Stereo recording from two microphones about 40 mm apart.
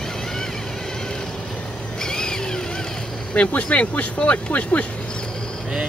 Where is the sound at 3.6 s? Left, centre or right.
Left.